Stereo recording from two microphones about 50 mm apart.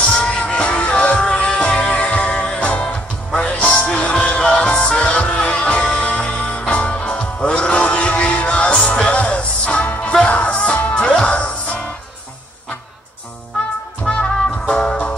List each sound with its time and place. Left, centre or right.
0.1 s music: left
14.1 s music: centre